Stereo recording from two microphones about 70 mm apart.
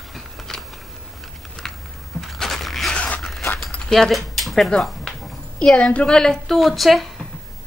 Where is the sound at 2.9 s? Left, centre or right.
Centre.